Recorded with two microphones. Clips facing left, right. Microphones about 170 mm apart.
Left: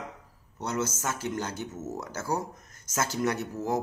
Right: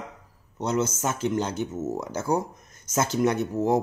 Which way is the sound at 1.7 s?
35° right (ahead or behind).